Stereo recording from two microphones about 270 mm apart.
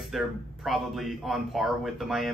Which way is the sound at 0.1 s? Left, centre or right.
Centre.